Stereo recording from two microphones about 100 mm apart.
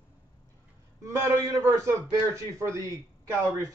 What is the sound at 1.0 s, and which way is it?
A man's voice, 35° right (ahead or behind).